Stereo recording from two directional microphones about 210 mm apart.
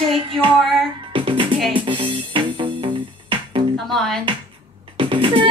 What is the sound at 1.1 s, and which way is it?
Music, 25° right (ahead or behind).